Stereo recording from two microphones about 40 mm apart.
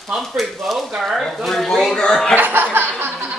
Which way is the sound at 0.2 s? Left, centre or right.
Centre.